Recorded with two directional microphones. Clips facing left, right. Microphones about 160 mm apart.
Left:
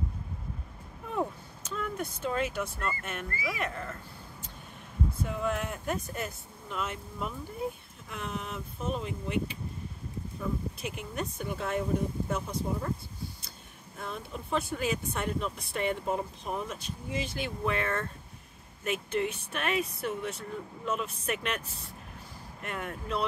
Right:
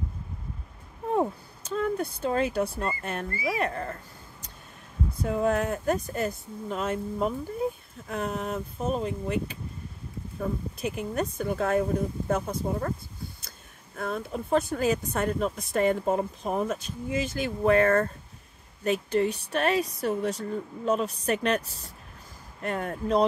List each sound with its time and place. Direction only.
1.1 s speech: 35° right (ahead or behind); by 12.9 s 50° right (ahead or behind)
13.9 s speech: 50° right (ahead or behind)